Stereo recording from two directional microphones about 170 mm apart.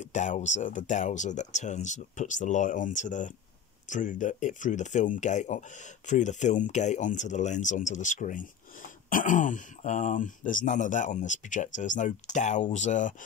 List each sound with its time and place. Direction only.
0.0 s speech: 45° left (ahead or behind)